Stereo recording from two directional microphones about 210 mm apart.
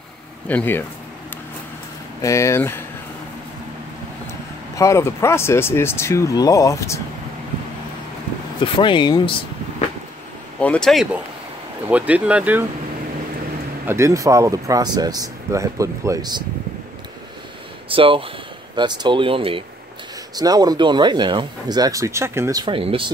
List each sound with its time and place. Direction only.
0.5 s speech: 10° left (ahead or behind)
2.2 s speech: 15° left (ahead or behind)
4.3 s speech: 15° left (ahead or behind)
8.5 s speech: 25° left (ahead or behind)
10.6 s speech: 5° left (ahead or behind)
13.8 s speech: 15° right (ahead or behind)
17.8 s speech: 25° right (ahead or behind)